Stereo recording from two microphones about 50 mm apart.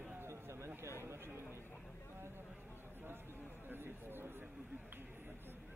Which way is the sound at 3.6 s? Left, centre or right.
Right.